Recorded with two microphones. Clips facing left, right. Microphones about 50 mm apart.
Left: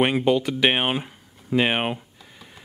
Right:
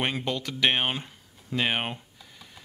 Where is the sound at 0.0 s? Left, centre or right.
Centre.